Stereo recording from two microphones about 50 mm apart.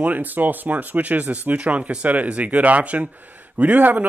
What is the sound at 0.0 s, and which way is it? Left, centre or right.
Speech, right.